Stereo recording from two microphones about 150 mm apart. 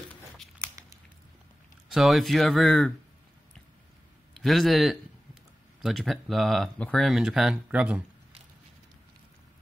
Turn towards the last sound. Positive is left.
turn(degrees=-10)  # may be behind; listen again after turning